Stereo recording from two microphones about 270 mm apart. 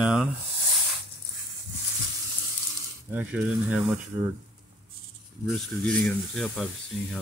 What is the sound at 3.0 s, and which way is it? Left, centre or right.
Speech, centre.